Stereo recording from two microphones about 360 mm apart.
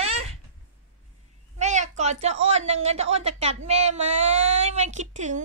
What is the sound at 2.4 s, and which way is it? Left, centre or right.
Speech, centre.